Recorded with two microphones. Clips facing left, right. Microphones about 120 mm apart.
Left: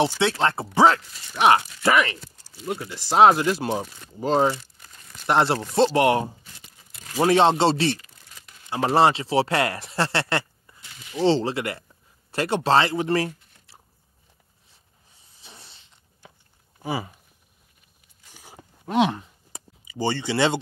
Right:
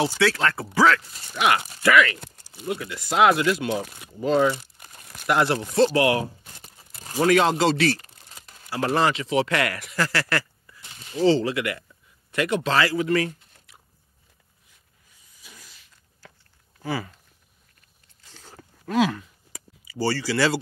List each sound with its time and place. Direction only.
0.0 s speech: 25° left (ahead or behind)
2.1 s a sound: 60° right (ahead or behind)
2.7 s speech: 30° left (ahead or behind)
3.8 s speech: 10° right (ahead or behind)
4.2 s speech: 35° left (ahead or behind)
6.6 s crumpling: 35° right (ahead or behind)
7.2 s a man's voice: 30° left (ahead or behind)
15.3 s a sound: 30° left (ahead or behind)
16.8 s speech: 20° left (ahead or behind)
18.2 s biting: 15° left (ahead or behind)
18.9 s a sound: 25° left (ahead or behind)